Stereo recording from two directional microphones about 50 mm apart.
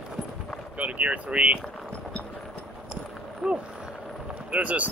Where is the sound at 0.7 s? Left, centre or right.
Right.